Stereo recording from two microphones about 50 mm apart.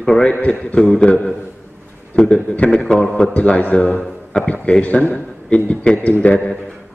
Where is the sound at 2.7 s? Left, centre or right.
Centre.